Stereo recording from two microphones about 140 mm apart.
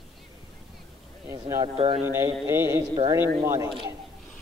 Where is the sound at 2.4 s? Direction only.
20° right (ahead or behind).